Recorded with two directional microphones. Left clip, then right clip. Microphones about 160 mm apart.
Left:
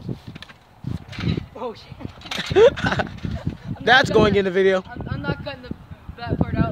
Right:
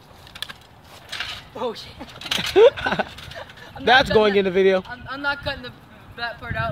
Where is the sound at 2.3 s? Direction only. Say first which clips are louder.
Right 1 dB; 20° left (ahead or behind).